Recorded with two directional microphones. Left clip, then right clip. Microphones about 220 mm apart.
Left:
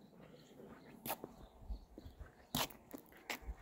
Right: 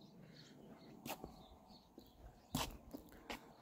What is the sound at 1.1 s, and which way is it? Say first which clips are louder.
Insect: left 4 dB; 50° left (ahead or behind).